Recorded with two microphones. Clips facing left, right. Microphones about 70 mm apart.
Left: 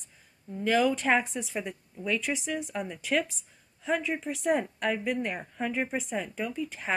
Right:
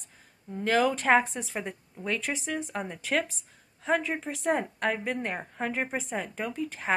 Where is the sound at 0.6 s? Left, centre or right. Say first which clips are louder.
Even; right.